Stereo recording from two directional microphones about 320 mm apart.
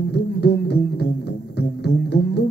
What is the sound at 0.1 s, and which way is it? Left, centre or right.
Music, left.